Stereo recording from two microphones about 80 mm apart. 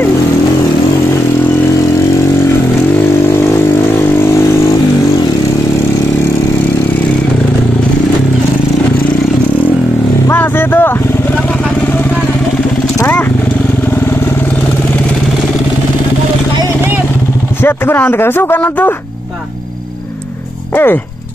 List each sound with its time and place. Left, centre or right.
10.2 s vehicle: left
13.0 s vehicle: left
17.6 s speech: left
20.7 s dog: left